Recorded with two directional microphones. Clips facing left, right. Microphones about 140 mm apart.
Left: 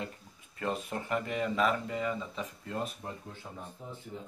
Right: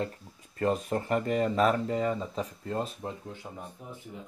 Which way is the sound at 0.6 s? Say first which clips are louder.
Right 7 dB; 40° right (ahead or behind).